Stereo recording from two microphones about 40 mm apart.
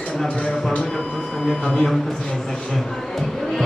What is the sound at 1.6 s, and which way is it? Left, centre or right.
Speech, left.